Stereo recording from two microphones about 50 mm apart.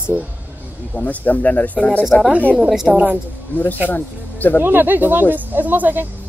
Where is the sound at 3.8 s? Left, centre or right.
Left.